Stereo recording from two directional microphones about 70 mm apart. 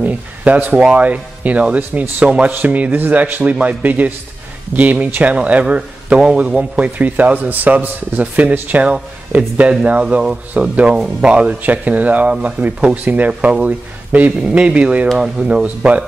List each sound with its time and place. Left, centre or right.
0.0 s a man's voice: right